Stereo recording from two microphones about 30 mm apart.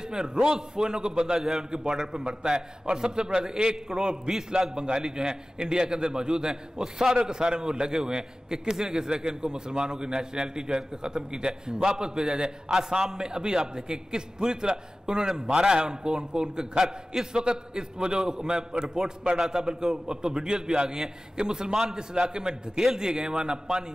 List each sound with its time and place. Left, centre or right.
0.1 s a man's voice: right
19.6 s a man's voice: right